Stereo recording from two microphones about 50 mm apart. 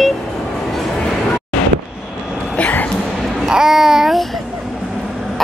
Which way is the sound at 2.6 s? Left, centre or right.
Left.